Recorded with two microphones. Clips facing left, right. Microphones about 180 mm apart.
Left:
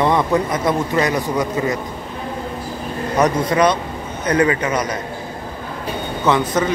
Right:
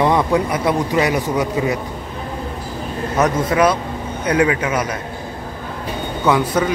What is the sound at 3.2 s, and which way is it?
A man's voice, 5° right (ahead or behind).